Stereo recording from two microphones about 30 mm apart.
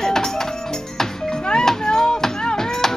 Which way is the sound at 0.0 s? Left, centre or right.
Centre.